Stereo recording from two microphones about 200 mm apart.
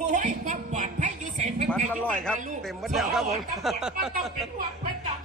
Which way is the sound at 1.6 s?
5° left (ahead or behind).